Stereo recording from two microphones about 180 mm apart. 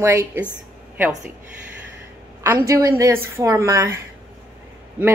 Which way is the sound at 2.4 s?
15° right (ahead or behind).